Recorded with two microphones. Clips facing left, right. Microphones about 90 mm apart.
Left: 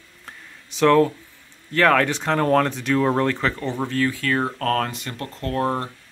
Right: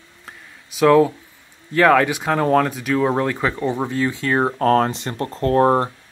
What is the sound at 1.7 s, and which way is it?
Speech, 10° right (ahead or behind).